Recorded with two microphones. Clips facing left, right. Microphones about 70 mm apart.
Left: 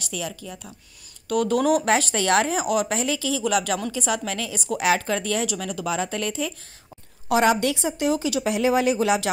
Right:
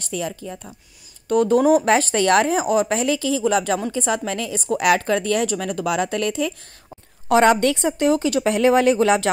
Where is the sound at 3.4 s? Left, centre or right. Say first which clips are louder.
Right 3 dB; right.